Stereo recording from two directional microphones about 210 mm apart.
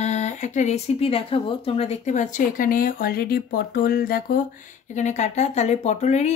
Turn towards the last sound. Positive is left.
turn(degrees=35)  # may be behind; listen again after turning